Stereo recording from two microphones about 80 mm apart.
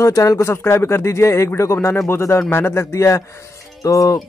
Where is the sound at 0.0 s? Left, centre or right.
Left.